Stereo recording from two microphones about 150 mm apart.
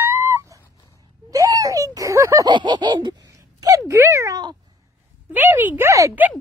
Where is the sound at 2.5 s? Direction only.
30° right (ahead or behind).